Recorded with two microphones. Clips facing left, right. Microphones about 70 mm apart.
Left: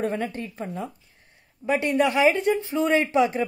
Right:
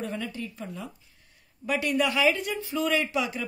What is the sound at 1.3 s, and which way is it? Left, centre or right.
Speech, left.